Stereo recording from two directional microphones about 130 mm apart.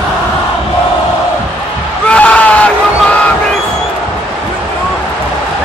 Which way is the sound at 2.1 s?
10° left (ahead or behind).